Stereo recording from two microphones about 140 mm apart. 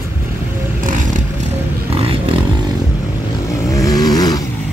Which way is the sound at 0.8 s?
70° right (ahead or behind).